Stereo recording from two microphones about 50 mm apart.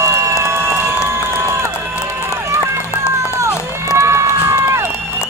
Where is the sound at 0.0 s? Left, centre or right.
Right.